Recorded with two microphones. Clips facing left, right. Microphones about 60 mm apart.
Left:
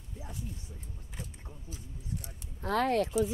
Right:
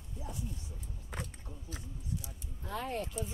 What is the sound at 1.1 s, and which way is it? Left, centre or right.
Speech, right.